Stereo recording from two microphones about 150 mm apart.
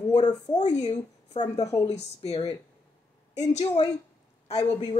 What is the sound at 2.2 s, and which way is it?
Speech, 45° left (ahead or behind).